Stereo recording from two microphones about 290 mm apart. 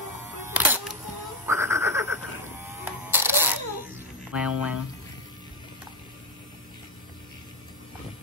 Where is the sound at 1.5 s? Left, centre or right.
Centre.